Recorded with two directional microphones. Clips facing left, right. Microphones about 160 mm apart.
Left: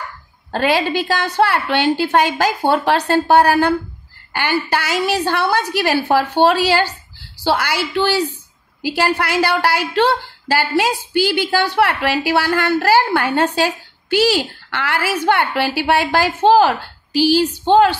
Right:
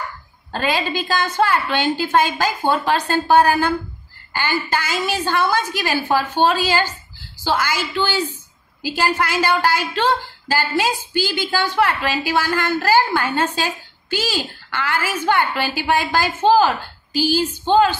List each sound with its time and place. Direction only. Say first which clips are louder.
0.5 s a woman's voice: left 5 dB; 70° left (ahead or behind)